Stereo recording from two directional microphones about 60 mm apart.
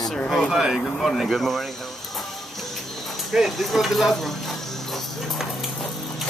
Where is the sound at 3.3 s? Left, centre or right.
Centre.